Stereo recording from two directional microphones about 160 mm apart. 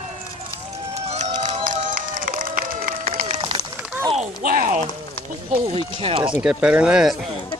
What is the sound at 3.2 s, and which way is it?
Run, 35° right (ahead or behind).